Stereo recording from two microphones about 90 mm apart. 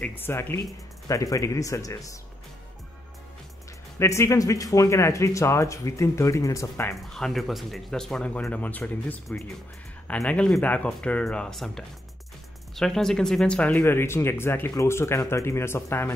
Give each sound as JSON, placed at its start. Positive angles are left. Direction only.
{"t": 0.0, "sound": "speech", "side_deg": 20}
{"t": 1.0, "sound": "speech", "side_deg": 40}
{"t": 4.0, "sound": "speech", "side_deg": 30}
{"t": 7.0, "sound": "speech", "side_deg": 5}
{"t": 12.7, "sound": "speech", "side_deg": 5}
{"t": 13.8, "sound": "speech", "side_deg": 30}